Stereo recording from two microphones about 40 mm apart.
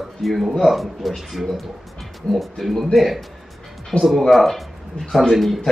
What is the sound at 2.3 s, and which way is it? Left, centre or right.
Speech, left.